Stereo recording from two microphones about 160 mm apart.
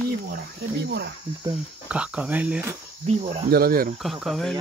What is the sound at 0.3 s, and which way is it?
Speech, 90° right.